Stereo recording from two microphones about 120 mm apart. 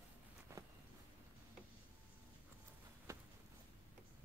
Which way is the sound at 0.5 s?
25° right (ahead or behind).